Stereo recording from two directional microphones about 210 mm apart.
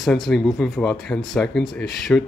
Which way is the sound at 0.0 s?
Centre (ahead or behind).